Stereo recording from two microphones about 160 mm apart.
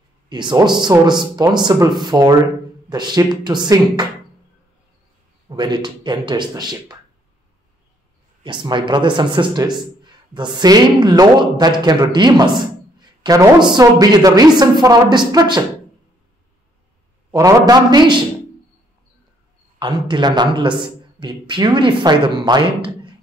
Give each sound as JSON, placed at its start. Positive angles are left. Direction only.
{"t": 0.3, "sound": "speech", "side_deg": -25}
{"t": 5.6, "sound": "speech", "side_deg": -30}
{"t": 8.5, "sound": "speech", "side_deg": -30}
{"t": 17.3, "sound": "speech", "side_deg": -20}
{"t": 19.8, "sound": "speech", "side_deg": -30}